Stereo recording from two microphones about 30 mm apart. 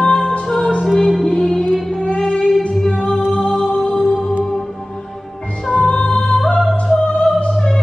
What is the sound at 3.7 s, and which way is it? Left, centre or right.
Music, left.